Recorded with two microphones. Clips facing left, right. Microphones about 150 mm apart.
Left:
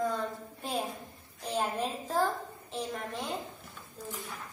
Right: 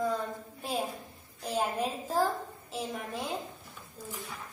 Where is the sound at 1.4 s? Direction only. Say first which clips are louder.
Right 1 dB; 10° right (ahead or behind).